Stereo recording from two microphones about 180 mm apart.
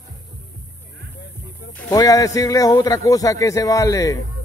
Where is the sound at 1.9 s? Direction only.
20° left (ahead or behind).